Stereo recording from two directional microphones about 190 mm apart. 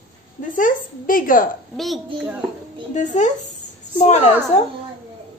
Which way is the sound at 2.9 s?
40° left (ahead or behind).